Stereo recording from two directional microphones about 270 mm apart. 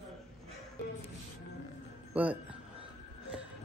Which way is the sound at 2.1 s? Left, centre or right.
Centre.